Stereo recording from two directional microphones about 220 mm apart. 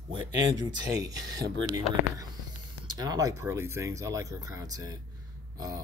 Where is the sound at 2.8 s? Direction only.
20° right (ahead or behind).